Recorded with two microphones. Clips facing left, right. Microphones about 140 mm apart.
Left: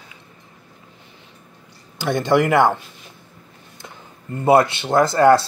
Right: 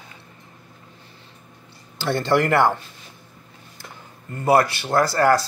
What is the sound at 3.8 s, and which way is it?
Speech, 20° left (ahead or behind).